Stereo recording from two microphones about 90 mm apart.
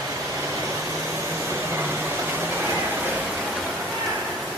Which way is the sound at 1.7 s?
20° right (ahead or behind).